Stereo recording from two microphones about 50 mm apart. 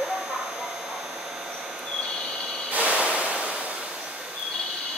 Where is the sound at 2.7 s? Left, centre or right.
Right.